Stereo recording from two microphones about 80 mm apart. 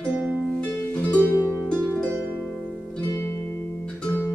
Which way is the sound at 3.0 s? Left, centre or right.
Left.